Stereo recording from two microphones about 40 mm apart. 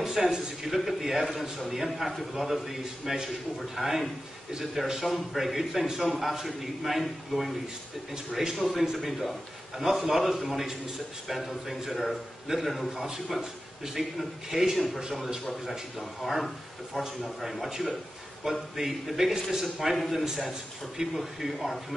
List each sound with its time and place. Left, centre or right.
0.0 s a man's voice: centre
8.4 s speech: centre
8.9 s a man's voice: centre